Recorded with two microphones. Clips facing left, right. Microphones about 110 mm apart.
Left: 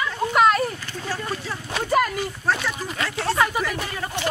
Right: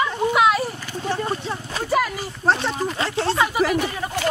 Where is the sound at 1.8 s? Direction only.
Centre (ahead or behind).